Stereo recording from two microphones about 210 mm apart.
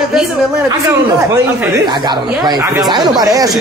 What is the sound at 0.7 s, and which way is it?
A woman's voice, 15° right (ahead or behind).